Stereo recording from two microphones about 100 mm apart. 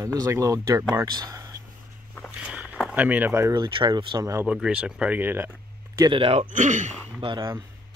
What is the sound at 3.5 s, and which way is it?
Speech, 50° right (ahead or behind).